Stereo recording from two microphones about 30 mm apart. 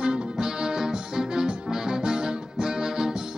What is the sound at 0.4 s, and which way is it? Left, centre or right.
Music, centre.